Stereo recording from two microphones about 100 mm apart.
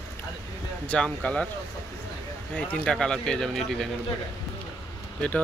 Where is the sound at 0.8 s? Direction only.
10° left (ahead or behind).